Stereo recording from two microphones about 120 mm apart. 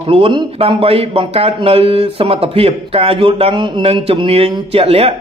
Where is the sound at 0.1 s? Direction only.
45° right (ahead or behind).